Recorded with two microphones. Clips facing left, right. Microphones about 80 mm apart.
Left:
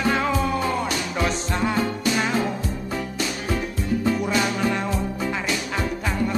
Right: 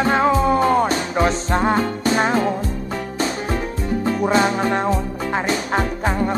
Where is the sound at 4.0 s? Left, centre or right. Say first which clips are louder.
Right 6 dB; right.